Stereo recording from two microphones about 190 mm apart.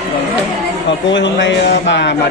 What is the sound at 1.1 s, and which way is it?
A man's voice, 70° left (ahead or behind).